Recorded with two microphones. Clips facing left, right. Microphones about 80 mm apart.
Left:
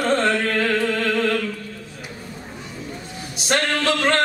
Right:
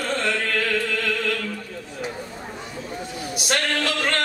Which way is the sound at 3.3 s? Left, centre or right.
Left.